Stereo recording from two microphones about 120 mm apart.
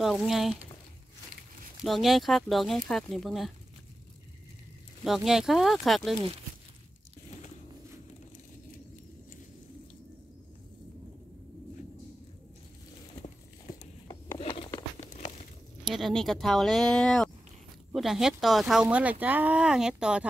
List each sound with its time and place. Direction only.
0.0 s speech: centre (ahead or behind)
1.8 s speech: centre (ahead or behind)
5.0 s speech: centre (ahead or behind)
14.4 s a sound: 50° left (ahead or behind)
15.9 s speech: centre (ahead or behind)